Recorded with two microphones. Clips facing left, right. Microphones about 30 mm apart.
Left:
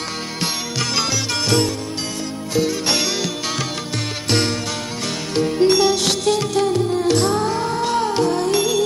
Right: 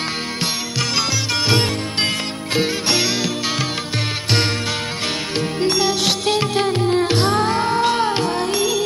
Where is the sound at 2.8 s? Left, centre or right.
Centre.